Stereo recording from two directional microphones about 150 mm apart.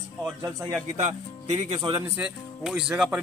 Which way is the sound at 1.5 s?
35° right (ahead or behind).